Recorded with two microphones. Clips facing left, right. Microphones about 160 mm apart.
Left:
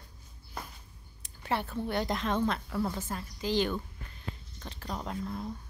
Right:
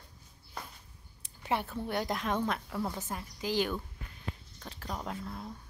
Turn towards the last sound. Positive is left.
turn(degrees=0)  # may be behind; listen again after turning